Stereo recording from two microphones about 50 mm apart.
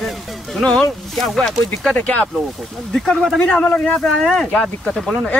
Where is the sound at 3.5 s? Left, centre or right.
Left.